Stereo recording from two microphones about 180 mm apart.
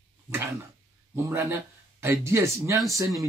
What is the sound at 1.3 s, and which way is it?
Speech, 15° right (ahead or behind).